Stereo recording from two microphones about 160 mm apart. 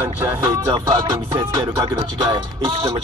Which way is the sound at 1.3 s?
25° right (ahead or behind).